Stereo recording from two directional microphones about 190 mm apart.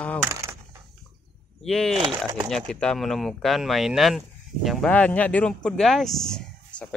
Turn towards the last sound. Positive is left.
turn(degrees=5)  # may be behind; listen again after turning